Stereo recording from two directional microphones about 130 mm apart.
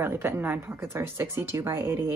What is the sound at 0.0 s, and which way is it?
Speech, 15° right (ahead or behind).